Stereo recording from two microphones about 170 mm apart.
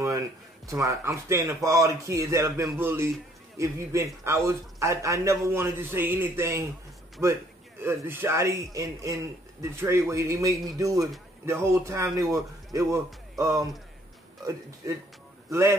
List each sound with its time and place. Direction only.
0.7 s a man's voice: 20° right (ahead or behind)